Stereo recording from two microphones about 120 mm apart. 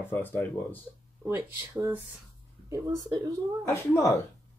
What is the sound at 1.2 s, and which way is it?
Speech, 15° right (ahead or behind).